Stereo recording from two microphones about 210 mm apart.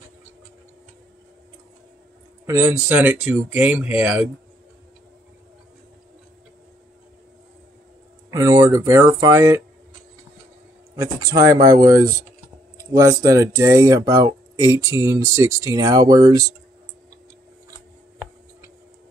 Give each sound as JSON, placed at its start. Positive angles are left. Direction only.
{"t": 2.4, "sound": "speech", "side_deg": -10}
{"t": 8.3, "sound": "speech", "side_deg": -15}
{"t": 11.0, "sound": "speech", "side_deg": -15}